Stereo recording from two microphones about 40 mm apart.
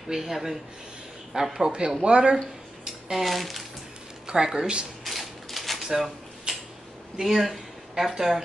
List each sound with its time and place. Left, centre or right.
0.1 s speech: centre
1.7 s speech: right
3.1 s speech: centre
4.3 s speech: centre
5.0 s a sound: centre
6.5 s a sound: centre
7.2 s speech: centre